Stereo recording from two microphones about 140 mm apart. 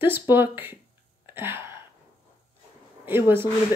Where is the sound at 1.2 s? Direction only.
15° right (ahead or behind).